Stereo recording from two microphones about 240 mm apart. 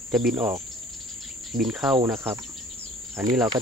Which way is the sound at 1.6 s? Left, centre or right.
Centre.